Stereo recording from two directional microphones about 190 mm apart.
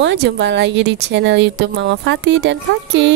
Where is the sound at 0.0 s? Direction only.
65° right (ahead or behind).